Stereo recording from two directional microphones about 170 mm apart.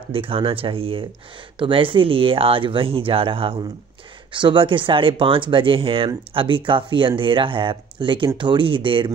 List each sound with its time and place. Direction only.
0.1 s speech: 35° right (ahead or behind)